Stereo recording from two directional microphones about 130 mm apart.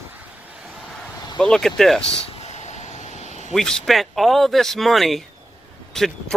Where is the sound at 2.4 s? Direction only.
60° left (ahead or behind).